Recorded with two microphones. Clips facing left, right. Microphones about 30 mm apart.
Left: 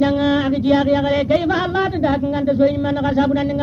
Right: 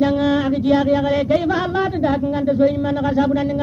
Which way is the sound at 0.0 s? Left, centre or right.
Left.